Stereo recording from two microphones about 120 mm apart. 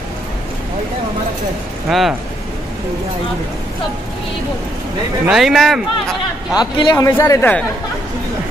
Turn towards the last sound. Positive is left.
turn(degrees=30)  # may be behind; listen again after turning